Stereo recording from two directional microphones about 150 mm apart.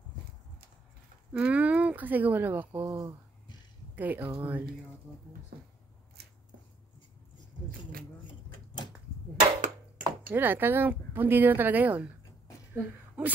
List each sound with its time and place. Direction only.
1.3 s speech: 10° right (ahead or behind)
2.8 s speech: 25° right (ahead or behind)
3.9 s speech: 10° right (ahead or behind)
5.1 s speech: 15° left (ahead or behind)
8.3 s a sound: 30° left (ahead or behind)
9.6 s ping: 65° right (ahead or behind)
10.3 s speech: 15° right (ahead or behind)
12.7 s a sound: 10° right (ahead or behind)